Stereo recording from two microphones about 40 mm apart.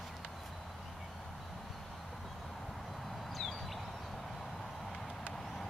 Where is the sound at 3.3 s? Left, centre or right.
Centre.